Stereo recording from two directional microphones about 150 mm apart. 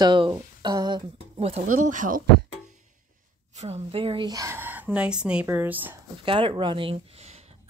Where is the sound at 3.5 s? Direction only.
45° right (ahead or behind); by 6.0 s 15° right (ahead or behind).